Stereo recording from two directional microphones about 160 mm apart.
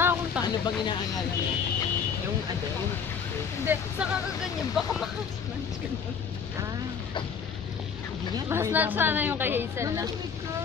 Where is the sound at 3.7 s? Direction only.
10° right (ahead or behind).